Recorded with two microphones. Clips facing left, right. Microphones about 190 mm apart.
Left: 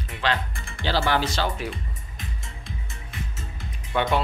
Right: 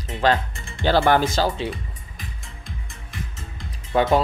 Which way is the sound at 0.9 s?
50° right (ahead or behind).